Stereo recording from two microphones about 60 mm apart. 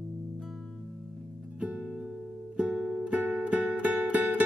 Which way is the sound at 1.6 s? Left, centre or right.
Centre.